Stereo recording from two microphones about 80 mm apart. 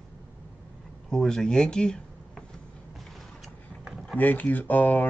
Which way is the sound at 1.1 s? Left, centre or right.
Centre.